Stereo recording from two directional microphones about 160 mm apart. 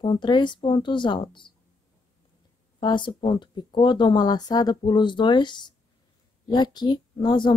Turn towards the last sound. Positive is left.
turn(degrees=30)  # may be behind; listen again after turning